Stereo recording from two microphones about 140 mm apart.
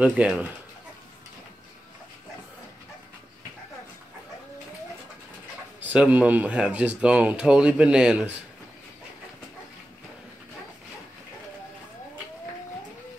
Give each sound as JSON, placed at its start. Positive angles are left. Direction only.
{"t": 0.0, "sound": "speech", "side_deg": -5}
{"t": 5.8, "sound": "speech", "side_deg": -10}